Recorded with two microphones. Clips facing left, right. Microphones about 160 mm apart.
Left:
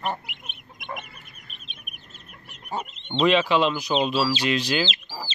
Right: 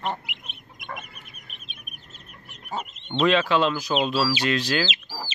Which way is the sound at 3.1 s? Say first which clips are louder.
Left 1 dB; centre (ahead or behind).